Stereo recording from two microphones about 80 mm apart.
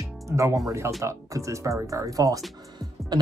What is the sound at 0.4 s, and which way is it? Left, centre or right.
Speech, right.